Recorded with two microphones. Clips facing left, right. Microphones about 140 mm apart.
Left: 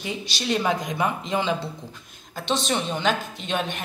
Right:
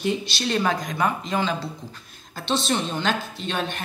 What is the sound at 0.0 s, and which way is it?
A woman's voice, 10° left (ahead or behind).